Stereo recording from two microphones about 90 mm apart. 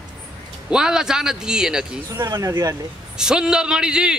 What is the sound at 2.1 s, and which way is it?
Speech, 40° right (ahead or behind).